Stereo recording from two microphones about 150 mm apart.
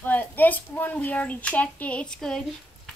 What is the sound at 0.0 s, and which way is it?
A child's voice, 10° left (ahead or behind).